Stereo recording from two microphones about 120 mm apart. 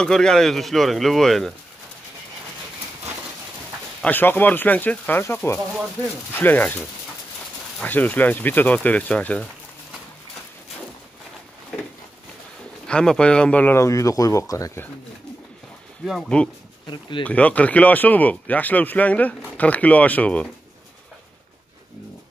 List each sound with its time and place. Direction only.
0.0 s speech: 5° left (ahead or behind)
4.0 s speech: 15° left (ahead or behind)
7.8 s speech: 15° left (ahead or behind)
12.8 s speech: 5° left (ahead or behind); by 14.9 s 25° left (ahead or behind)
16.1 s speech: 5° left (ahead or behind)
16.8 s speech: 40° left (ahead or behind)
17.2 s speech: 10° left (ahead or behind)